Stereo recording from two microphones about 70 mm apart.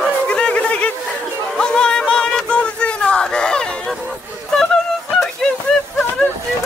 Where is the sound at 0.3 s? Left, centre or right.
Centre.